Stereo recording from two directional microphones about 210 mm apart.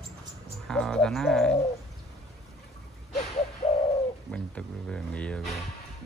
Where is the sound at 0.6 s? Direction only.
5° left (ahead or behind).